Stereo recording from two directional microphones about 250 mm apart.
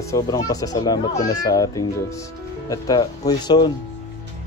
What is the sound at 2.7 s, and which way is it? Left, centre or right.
Speech, centre.